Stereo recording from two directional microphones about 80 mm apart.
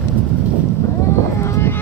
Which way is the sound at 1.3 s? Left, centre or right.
Left.